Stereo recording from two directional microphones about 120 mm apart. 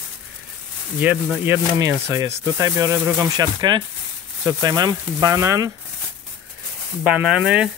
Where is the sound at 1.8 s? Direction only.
30° right (ahead or behind).